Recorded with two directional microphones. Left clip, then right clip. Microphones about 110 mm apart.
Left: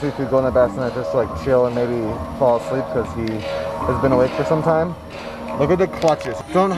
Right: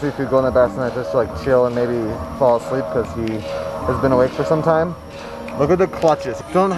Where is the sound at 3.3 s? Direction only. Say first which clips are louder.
Even; 15° left (ahead or behind).